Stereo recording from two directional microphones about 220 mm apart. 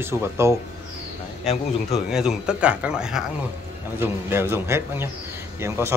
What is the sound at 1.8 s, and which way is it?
A man's voice, centre (ahead or behind).